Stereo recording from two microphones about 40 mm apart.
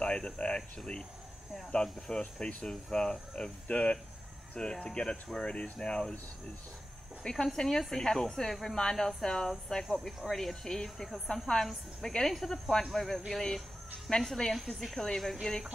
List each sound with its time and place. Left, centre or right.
0.0 s speech: left
1.7 s speech: centre
7.4 s speech: centre